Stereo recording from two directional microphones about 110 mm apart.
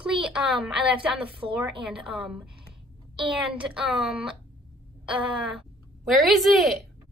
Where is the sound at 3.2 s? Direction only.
50° right (ahead or behind).